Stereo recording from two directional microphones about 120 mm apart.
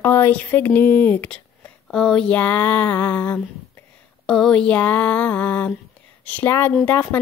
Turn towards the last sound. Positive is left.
turn(degrees=15)  # may be behind; listen again after turning